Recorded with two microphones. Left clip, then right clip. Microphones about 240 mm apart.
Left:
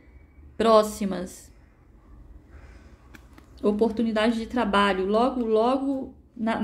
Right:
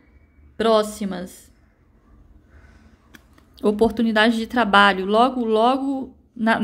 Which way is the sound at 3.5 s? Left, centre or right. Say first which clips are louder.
Right 4 dB; right.